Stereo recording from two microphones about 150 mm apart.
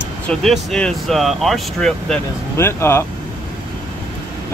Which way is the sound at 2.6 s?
15° left (ahead or behind).